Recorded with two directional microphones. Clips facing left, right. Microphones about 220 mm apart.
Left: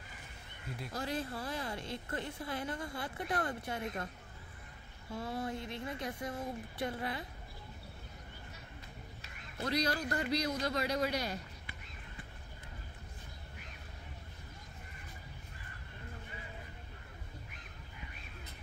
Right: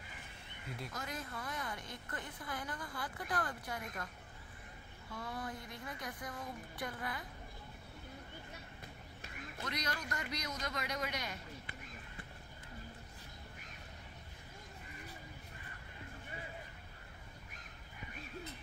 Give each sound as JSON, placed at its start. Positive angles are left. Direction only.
{"t": 0.9, "sound": "a woman's voice", "side_deg": 30}
{"t": 5.1, "sound": "a woman's voice", "side_deg": 25}
{"t": 9.6, "sound": "speech", "side_deg": 30}